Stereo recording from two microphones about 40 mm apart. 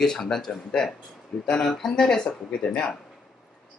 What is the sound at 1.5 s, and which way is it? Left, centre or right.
Speech, left.